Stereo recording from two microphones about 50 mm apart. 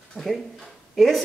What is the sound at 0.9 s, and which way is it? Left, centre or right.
Speech, centre.